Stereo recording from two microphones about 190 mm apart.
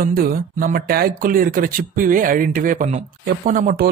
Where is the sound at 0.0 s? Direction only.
50° right (ahead or behind).